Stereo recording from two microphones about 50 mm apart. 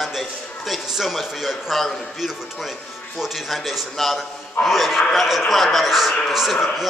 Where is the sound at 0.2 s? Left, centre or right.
Centre.